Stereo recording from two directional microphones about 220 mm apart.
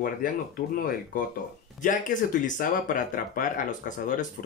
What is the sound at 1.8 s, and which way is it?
Speech, 35° left (ahead or behind).